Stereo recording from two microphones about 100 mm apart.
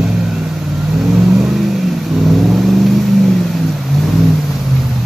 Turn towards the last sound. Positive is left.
turn(degrees=0)  # may be behind; listen again after turning